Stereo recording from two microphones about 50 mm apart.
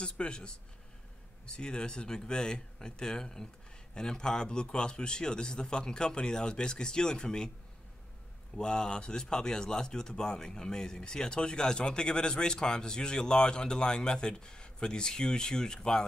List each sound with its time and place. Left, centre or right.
0.0 s speech: centre
8.5 s speech: centre